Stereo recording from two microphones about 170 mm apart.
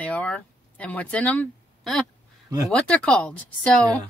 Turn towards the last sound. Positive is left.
turn(degrees=5)  # may be behind; listen again after turning